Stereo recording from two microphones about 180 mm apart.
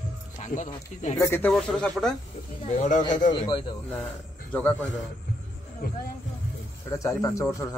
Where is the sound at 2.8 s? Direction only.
45° left (ahead or behind).